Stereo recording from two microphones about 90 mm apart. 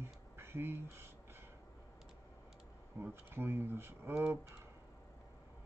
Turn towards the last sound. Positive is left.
turn(degrees=-25)  # may be behind; listen again after turning